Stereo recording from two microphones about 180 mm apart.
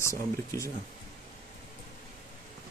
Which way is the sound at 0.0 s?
15° left (ahead or behind).